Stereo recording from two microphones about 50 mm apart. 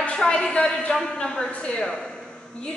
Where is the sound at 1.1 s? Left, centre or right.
Left.